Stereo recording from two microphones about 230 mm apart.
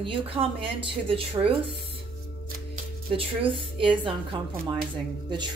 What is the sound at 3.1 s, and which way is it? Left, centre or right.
Speech, right.